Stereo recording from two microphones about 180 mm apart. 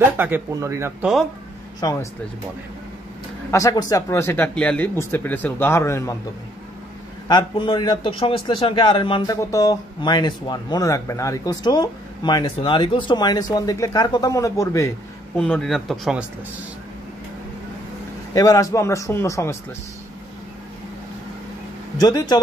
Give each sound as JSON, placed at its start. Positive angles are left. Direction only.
{"t": 0.2, "sound": "speech", "side_deg": -15}
{"t": 1.8, "sound": "a man's voice", "side_deg": 20}
{"t": 3.5, "sound": "speech", "side_deg": 20}
{"t": 7.2, "sound": "a man's voice", "side_deg": 25}
{"t": 15.3, "sound": "speech", "side_deg": 5}
{"t": 18.3, "sound": "speech", "side_deg": 20}
{"t": 21.9, "sound": "a man's voice", "side_deg": 20}